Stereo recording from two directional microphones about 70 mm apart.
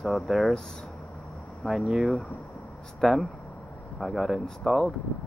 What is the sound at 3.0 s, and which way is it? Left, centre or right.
Speech, centre.